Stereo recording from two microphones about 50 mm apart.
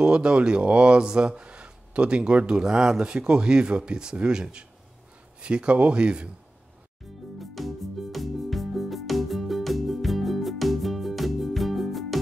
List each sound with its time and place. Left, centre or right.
0.0 s speech: centre
7.3 s music: centre